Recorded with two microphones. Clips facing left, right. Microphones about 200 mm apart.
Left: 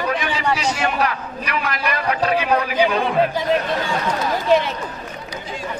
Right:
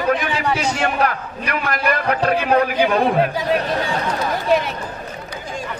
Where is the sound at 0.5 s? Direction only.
50° right (ahead or behind).